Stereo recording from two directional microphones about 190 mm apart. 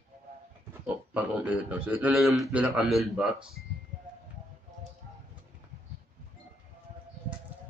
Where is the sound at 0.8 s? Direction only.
10° right (ahead or behind).